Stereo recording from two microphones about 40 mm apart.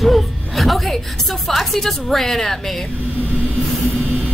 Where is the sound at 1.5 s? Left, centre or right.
Centre.